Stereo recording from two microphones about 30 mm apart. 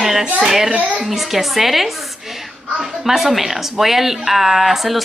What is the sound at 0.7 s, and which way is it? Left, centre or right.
Speech, right.